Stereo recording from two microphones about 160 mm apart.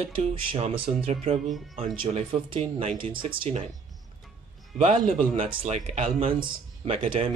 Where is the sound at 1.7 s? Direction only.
35° right (ahead or behind).